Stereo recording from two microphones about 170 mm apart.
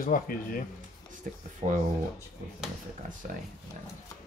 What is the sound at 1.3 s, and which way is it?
Speech, 50° right (ahead or behind).